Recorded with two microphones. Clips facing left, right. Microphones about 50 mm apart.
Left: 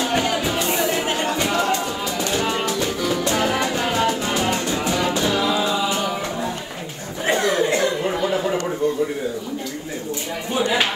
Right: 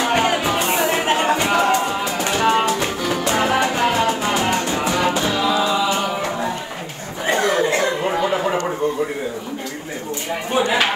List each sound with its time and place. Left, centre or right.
0.0 s music: right
7.2 s chatter: right
10.5 s chopping: right